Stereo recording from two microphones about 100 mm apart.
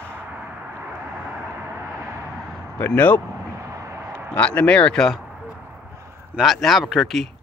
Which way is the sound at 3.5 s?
30° right (ahead or behind).